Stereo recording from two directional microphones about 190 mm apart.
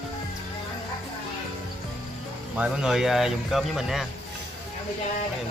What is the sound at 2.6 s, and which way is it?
Speech, 5° right (ahead or behind).